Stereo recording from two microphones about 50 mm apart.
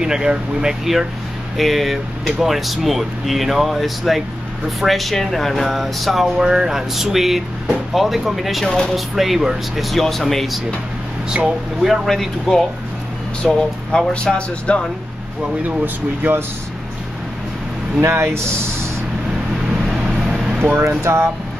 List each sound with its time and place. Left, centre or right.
0.0 s speech: centre
11.2 s speech: centre
12.1 s speech: centre
14.1 s speech: left
15.8 s speech: right
18.0 s speech: right
19.7 s vehicle: centre
21.0 s speech: right